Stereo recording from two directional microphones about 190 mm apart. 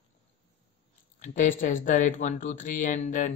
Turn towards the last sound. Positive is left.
turn(degrees=40)  # may be behind; listen again after turning